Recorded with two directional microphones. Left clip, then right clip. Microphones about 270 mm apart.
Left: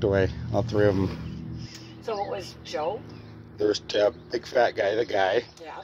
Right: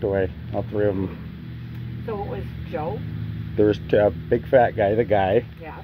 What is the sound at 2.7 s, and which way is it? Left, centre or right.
Speech, left.